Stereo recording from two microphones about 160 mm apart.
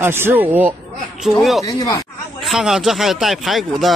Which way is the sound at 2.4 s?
Centre (ahead or behind).